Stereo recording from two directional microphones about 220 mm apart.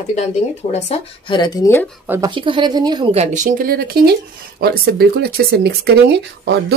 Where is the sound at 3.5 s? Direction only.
40° right (ahead or behind).